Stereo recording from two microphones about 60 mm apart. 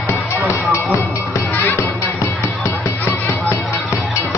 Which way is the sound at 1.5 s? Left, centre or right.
Left.